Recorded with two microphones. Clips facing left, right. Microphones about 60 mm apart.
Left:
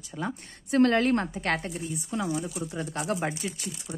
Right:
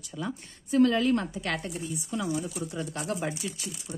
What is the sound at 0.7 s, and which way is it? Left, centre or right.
Speech, left.